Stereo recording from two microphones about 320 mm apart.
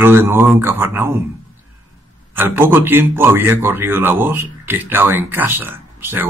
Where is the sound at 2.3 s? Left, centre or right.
Centre.